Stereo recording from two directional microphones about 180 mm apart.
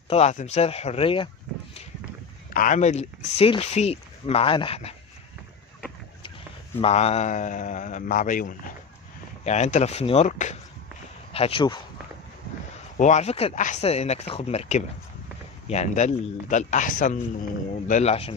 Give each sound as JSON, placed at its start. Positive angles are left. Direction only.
{"t": 0.1, "sound": "speech", "side_deg": 40}
{"t": 2.5, "sound": "speech", "side_deg": 45}
{"t": 6.8, "sound": "speech", "side_deg": 35}
{"t": 11.3, "sound": "speech", "side_deg": 30}
{"t": 12.9, "sound": "speech", "side_deg": 40}